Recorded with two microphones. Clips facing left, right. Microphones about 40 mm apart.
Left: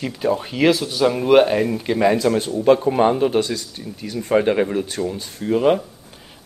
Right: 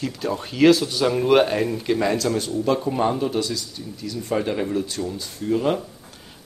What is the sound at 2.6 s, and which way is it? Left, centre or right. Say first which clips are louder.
Speech: left 7 dB; left.